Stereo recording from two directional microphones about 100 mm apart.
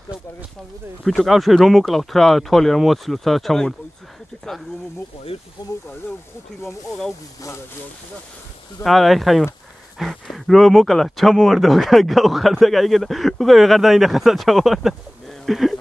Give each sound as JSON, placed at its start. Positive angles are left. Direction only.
{"t": 1.0, "sound": "speech", "side_deg": 0}
{"t": 5.3, "sound": "speech", "side_deg": 90}
{"t": 8.8, "sound": "speech", "side_deg": 0}